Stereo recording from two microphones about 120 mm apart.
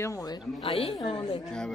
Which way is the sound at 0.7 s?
50° left (ahead or behind).